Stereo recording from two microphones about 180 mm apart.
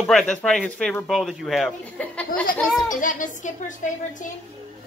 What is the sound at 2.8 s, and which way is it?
Speech, 45° left (ahead or behind).